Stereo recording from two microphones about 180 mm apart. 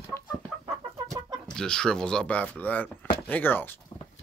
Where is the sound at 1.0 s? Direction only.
5° left (ahead or behind).